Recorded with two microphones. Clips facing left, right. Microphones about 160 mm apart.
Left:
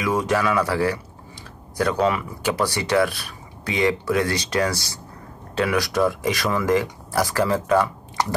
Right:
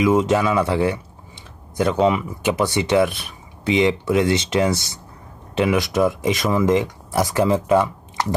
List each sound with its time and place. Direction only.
0.0 s speech: 20° right (ahead or behind)